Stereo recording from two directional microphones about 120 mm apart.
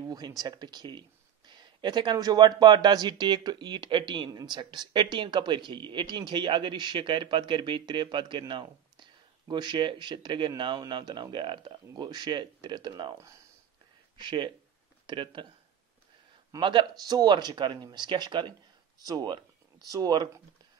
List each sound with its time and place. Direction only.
0.1 s speech: 30° right (ahead or behind)
14.2 s speech: 40° right (ahead or behind)
16.5 s speech: 40° right (ahead or behind)